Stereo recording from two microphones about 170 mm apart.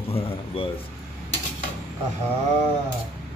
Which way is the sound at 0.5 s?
35° left (ahead or behind).